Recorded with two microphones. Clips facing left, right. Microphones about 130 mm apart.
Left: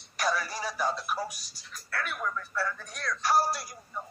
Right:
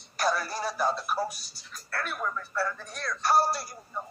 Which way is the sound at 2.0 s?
35° right (ahead or behind).